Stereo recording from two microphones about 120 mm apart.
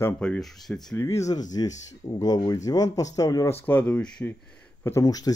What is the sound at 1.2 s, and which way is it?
Speech, 30° left (ahead or behind).